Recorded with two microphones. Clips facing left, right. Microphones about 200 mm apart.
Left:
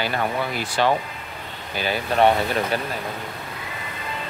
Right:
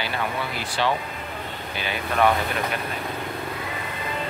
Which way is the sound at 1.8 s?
35° left (ahead or behind).